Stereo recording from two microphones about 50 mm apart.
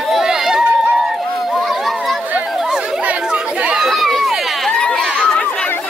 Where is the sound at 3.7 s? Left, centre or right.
Centre.